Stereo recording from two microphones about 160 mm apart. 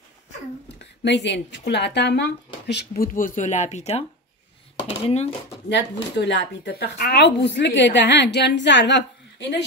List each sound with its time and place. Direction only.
1.0 s speech: 90° left; by 5.3 s 40° left (ahead or behind)
5.7 s speech: 90° left